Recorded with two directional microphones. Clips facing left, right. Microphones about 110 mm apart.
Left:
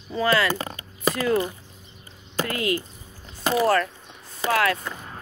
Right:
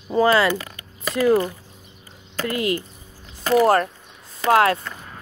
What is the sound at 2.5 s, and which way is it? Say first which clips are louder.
Speech: right 4 dB; 30° right (ahead or behind).